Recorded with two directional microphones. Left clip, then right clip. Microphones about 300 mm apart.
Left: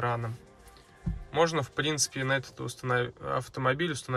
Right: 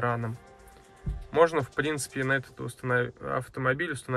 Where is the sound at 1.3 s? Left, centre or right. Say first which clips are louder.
Right 4 dB; centre.